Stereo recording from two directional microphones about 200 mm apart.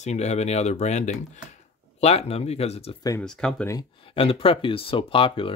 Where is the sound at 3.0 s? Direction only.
15° left (ahead or behind).